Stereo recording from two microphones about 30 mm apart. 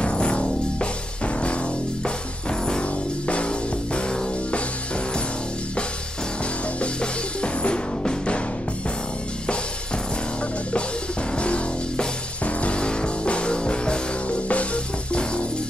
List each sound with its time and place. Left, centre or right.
0.0 s music: left
3.3 s music: left
6.8 s music: left
11.3 s music: left
12.7 s music: left
14.5 s music: left